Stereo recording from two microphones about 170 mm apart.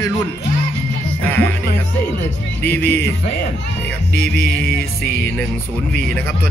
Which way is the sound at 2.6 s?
10° left (ahead or behind).